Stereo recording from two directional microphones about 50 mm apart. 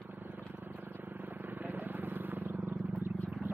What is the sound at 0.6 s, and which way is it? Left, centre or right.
Vehicle, right.